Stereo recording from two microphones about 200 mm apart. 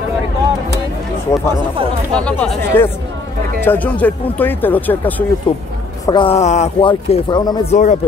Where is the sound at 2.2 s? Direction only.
5° left (ahead or behind).